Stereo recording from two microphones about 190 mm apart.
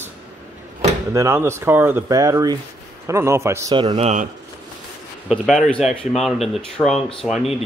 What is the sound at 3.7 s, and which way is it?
Speech, 30° right (ahead or behind).